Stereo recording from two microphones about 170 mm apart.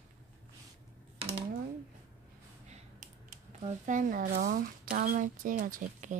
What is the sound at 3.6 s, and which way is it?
Speech, 50° right (ahead or behind).